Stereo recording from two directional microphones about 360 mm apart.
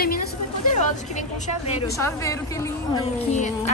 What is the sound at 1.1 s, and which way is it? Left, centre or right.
A woman's voice, centre.